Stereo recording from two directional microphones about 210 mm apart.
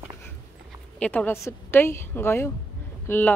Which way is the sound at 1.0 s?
10° left (ahead or behind).